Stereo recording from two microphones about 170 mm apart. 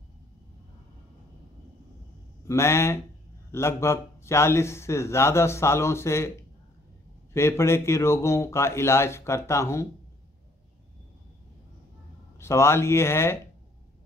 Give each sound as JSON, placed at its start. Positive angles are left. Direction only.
{"t": 2.4, "sound": "speech", "side_deg": 15}
{"t": 7.3, "sound": "speech", "side_deg": 15}
{"t": 12.4, "sound": "speech", "side_deg": 15}